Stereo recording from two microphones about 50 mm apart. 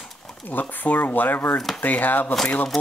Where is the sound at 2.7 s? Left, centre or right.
Centre.